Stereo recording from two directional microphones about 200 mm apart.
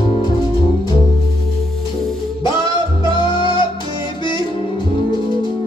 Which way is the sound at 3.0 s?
25° left (ahead or behind).